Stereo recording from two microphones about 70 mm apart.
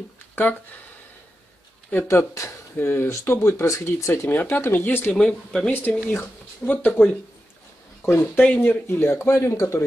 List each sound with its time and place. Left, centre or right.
0.4 s speech: left
2.0 s speech: left
2.8 s speech: left
4.3 s speech: left
5.1 s speech: centre
5.7 s speech: left
8.2 s speech: centre
8.5 s speech: left